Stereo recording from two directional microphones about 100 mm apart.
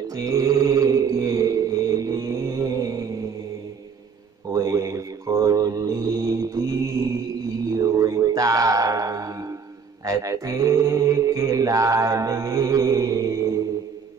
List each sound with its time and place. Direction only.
0.1 s mantra: 35° right (ahead or behind)
4.5 s mantra: 35° right (ahead or behind)
7.7 s music: 35° right (ahead or behind)